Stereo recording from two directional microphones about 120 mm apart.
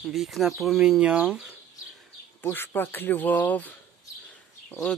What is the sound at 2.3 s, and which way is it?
Speech, 20° left (ahead or behind).